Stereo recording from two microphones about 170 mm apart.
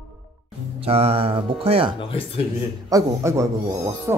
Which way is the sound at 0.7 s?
35° right (ahead or behind).